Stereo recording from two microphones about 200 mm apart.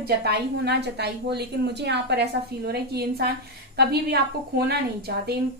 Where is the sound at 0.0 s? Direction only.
55° right (ahead or behind).